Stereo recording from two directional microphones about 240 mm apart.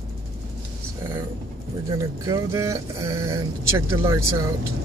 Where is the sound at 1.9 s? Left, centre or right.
Centre.